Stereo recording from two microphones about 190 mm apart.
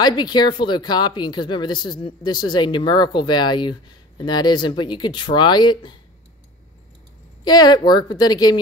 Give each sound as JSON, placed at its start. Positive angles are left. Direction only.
{"t": 0.0, "sound": "speech", "side_deg": 20}
{"t": 7.4, "sound": "speech", "side_deg": 20}